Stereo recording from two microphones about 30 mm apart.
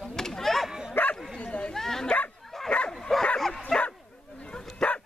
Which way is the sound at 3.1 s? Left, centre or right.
Centre.